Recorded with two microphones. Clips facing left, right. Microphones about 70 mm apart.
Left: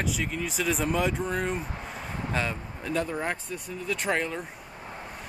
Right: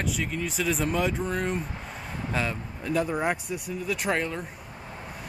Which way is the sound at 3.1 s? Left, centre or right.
Centre.